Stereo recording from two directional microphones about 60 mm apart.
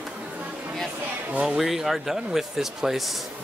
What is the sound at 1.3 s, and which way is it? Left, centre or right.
Speech, centre.